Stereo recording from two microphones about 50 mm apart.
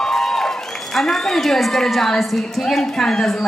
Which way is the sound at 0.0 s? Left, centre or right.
Centre.